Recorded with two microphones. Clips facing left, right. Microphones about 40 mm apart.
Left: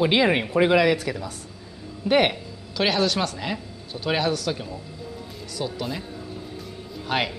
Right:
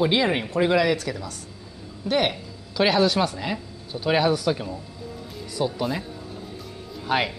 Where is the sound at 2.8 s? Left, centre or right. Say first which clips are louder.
Right 3 dB; centre.